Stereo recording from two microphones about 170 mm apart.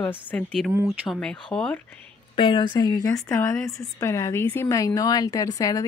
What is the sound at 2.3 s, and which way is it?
A woman's voice, 25° left (ahead or behind).